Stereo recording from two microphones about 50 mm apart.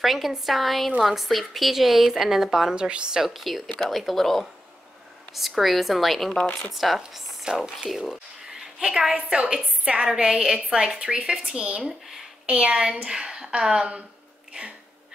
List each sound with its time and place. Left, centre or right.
0.0 s a woman's voice: centre
2.7 s a woman's voice: centre
3.2 s a woman's voice: centre
6.3 s speech: centre
6.7 s a woman's voice: centre